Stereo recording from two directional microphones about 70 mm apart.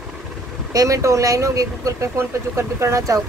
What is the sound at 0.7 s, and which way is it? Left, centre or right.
Speech, right.